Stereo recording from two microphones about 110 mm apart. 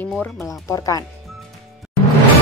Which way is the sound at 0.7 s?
30° left (ahead or behind).